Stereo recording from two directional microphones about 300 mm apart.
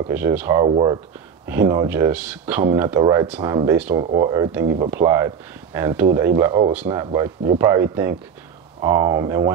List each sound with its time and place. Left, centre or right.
0.1 s speech: centre
0.7 s speech: centre
4.0 s speech: centre